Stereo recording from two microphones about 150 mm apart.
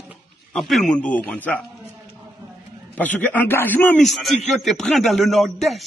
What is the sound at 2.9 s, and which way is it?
A man's voice, 10° left (ahead or behind).